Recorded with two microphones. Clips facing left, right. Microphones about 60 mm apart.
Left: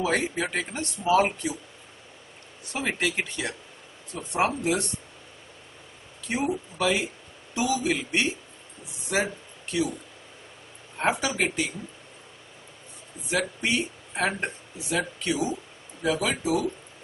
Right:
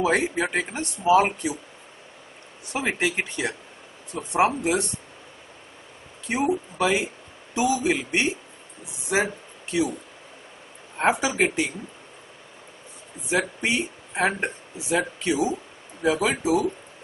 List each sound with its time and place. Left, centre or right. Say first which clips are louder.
0.0 s speech: right 4 dB; centre
2.7 s speech: right 3 dB; centre
6.2 s speech: right 4 dB; centre
11.0 s speech: right 4 dB; centre
13.3 s speech: right 2 dB; centre